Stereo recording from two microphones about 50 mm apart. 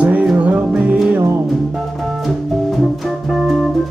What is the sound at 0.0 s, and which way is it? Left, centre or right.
Music, right.